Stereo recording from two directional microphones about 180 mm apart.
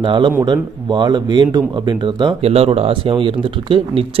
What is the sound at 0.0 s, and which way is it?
A man's voice, 25° right (ahead or behind).